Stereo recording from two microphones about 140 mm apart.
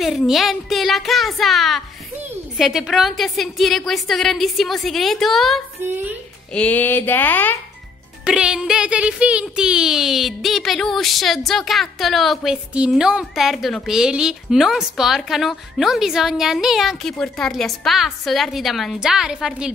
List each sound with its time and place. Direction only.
0.0 s speech: centre (ahead or behind)
5.8 s a woman's voice: 15° right (ahead or behind)
6.5 s speech: 10° left (ahead or behind)
8.3 s speech: 5° right (ahead or behind)